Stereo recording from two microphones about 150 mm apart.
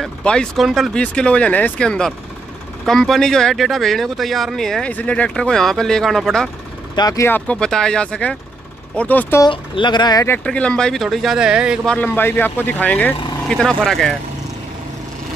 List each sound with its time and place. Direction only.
0.0 s speech: 5° left (ahead or behind)
7.0 s speech: 25° left (ahead or behind)
7.2 s speech: 10° left (ahead or behind)
9.4 s speech: 30° left (ahead or behind)
10.2 s speech: 10° left (ahead or behind); by 11.9 s 5° right (ahead or behind)
11.9 s speech: 10° left (ahead or behind)